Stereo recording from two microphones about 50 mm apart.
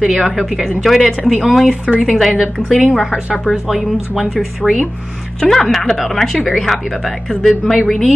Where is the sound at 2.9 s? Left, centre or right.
Centre.